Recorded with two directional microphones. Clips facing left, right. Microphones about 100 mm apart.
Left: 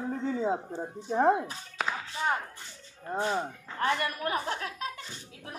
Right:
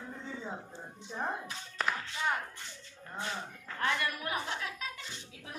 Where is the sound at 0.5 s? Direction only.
45° left (ahead or behind).